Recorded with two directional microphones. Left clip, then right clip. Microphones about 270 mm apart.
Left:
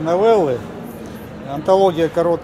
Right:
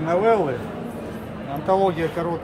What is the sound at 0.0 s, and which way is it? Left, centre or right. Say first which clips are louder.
Speech: left 5 dB; left.